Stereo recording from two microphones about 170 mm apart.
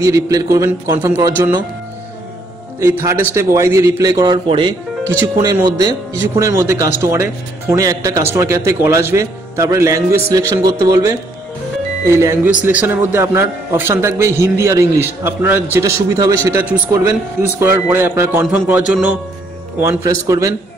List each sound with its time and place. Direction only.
0.0 s speech: 20° right (ahead or behind)
2.8 s a man's voice: 20° right (ahead or behind)